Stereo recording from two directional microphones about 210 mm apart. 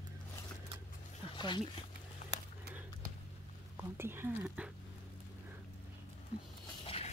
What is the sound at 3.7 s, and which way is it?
Speech, 10° right (ahead or behind).